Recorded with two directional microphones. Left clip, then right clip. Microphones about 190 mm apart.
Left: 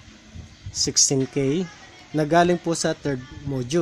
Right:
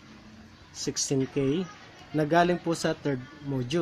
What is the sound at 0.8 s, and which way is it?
Speech, 35° left (ahead or behind).